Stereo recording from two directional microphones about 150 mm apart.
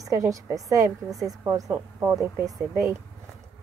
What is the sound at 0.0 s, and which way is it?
A woman's voice, 20° right (ahead or behind).